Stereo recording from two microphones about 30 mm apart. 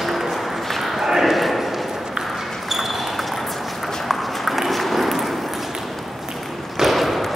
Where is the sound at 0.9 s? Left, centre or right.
Centre.